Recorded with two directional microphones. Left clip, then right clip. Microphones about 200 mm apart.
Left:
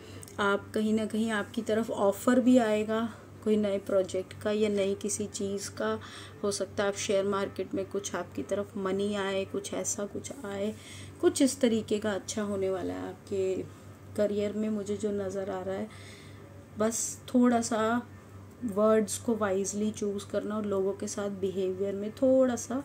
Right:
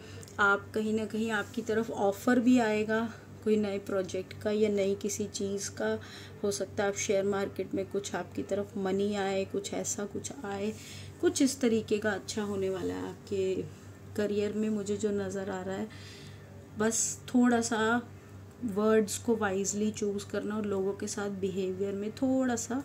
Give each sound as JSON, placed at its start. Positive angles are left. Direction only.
{"t": 0.4, "sound": "speech", "side_deg": 10}